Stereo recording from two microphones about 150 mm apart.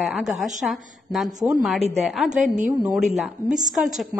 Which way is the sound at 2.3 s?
60° right (ahead or behind).